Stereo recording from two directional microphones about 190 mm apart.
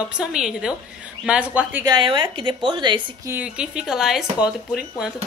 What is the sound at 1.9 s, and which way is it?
A woman's voice, 25° right (ahead or behind).